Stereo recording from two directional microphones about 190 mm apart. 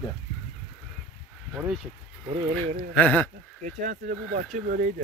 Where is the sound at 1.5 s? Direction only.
5° right (ahead or behind).